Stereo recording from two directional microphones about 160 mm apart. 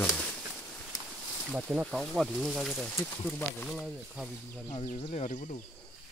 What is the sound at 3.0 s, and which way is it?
Speech, 15° left (ahead or behind).